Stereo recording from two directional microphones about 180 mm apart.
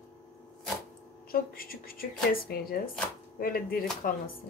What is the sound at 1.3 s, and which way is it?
A woman's voice, 55° left (ahead or behind).